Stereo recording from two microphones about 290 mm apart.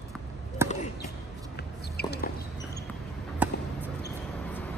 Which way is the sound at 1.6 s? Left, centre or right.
Left.